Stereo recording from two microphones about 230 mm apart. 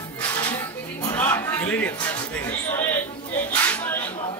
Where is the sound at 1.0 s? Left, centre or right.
Centre.